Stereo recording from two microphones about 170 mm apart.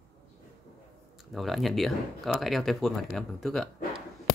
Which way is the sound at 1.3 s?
Centre (ahead or behind).